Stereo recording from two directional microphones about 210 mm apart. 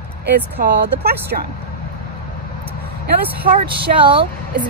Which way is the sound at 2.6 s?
45° right (ahead or behind).